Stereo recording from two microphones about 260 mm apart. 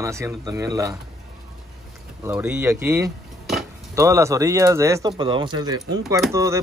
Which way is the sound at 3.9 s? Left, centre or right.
Centre.